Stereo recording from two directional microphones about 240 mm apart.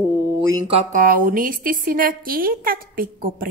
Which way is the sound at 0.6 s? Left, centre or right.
Right.